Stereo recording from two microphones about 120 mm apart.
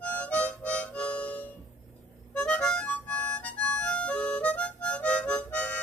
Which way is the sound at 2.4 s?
10° left (ahead or behind).